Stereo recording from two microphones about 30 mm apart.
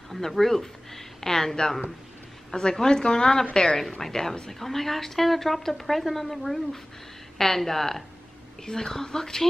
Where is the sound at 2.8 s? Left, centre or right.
Left.